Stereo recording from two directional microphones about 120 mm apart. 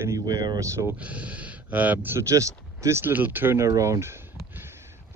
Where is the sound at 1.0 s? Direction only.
10° right (ahead or behind).